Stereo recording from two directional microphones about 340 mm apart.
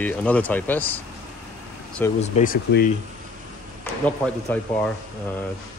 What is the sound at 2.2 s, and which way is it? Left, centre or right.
Speech, centre.